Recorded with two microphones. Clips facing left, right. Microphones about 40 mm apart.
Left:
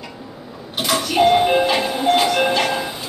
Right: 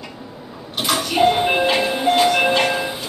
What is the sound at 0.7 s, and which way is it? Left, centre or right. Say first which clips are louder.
Music: left 1 dB; centre.